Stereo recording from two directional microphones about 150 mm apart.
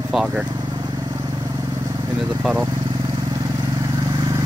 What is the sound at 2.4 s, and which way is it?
Speech, 10° right (ahead or behind).